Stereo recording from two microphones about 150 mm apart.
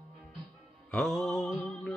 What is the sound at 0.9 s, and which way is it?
Music, 5° left (ahead or behind).